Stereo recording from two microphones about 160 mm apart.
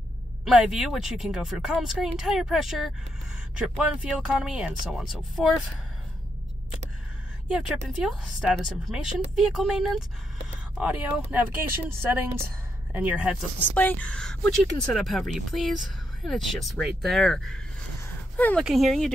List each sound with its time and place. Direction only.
0.5 s speech: 5° right (ahead or behind)
7.4 s speech: 5° right (ahead or behind)
13.7 s speech: 10° left (ahead or behind)
18.0 s a sound: 10° left (ahead or behind)
18.6 s speech: centre (ahead or behind)